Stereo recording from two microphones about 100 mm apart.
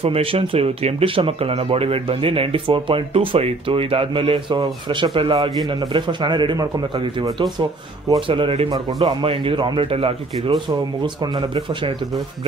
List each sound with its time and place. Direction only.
0.0 s a man's voice: 75° right (ahead or behind); by 5.3 s 60° right (ahead or behind)
5.3 s a man's voice: 45° right (ahead or behind)
8.3 s a man's voice: 60° right (ahead or behind)
11.0 s a man's voice: 55° right (ahead or behind)